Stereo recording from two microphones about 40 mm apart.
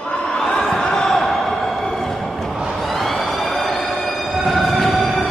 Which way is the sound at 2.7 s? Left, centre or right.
Centre.